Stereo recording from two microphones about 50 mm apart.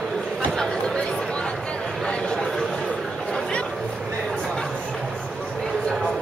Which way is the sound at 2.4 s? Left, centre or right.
Centre.